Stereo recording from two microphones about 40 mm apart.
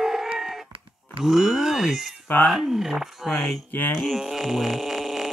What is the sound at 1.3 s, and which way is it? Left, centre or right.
Groan, centre.